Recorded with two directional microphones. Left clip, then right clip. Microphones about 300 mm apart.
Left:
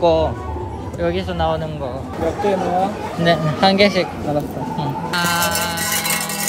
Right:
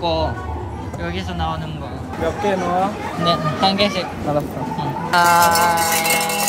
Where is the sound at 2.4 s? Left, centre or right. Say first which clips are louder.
Left 1 dB; right.